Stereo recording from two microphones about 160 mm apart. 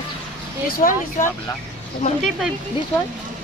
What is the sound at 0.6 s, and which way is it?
Speech, 60° left (ahead or behind).